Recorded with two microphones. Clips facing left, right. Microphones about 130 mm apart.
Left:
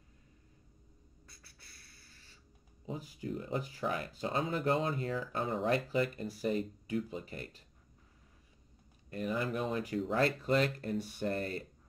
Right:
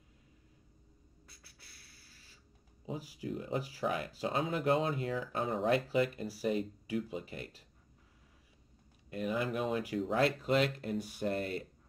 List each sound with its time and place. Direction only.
1.2 s a sound: 5° right (ahead or behind)
2.9 s speech: 5° right (ahead or behind)
9.1 s speech: 5° right (ahead or behind)